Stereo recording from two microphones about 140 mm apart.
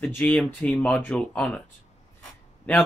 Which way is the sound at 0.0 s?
10° left (ahead or behind).